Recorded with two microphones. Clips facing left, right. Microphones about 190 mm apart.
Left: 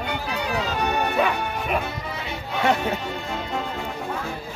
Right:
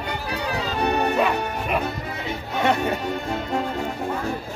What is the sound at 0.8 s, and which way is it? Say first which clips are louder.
Music: right 5 dB; 35° right (ahead or behind).